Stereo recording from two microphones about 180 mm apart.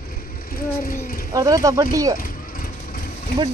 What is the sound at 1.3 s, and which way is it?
Speech, 20° right (ahead or behind).